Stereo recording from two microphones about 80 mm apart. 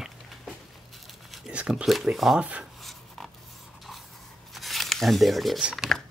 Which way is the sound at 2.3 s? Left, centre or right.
Centre.